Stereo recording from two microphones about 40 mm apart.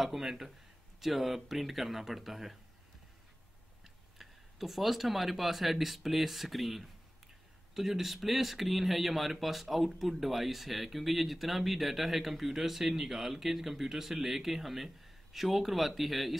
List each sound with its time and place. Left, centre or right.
0.0 s speech: centre
3.8 s speech: centre